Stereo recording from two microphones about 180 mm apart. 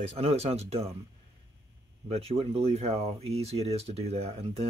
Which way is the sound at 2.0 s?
35° right (ahead or behind).